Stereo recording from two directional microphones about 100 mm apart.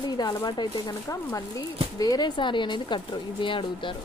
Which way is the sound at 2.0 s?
45° left (ahead or behind).